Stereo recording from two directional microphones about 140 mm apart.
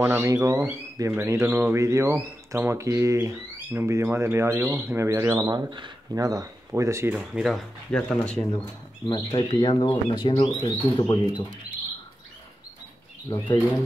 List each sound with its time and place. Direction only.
0.0 s speech: 20° right (ahead or behind)
7.2 s speech: centre (ahead or behind)
9.1 s speech: 30° left (ahead or behind)
13.3 s speech: 35° left (ahead or behind)